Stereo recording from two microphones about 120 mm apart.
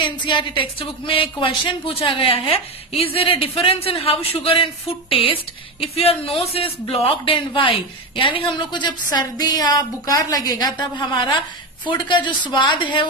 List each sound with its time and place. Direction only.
0.0 s a woman's voice: 40° left (ahead or behind)